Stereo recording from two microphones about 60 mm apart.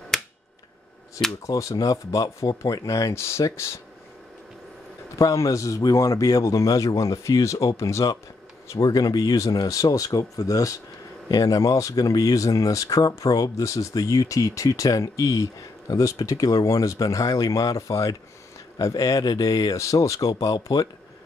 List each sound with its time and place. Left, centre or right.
0.1 s a sound: centre
1.4 s speech: left
3.2 s speech: left
5.2 s speech: left
8.6 s speech: left
11.2 s speech: left